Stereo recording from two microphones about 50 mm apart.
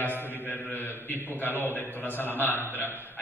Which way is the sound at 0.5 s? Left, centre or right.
Left.